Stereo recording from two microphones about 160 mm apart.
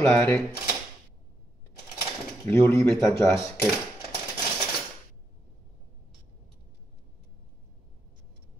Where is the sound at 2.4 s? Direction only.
15° left (ahead or behind).